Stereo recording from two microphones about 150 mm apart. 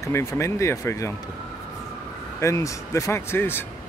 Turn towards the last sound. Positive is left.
turn(degrees=15)  # may be behind; listen again after turning